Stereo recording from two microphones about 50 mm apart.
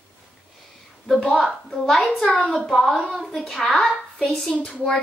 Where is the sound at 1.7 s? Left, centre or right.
Centre.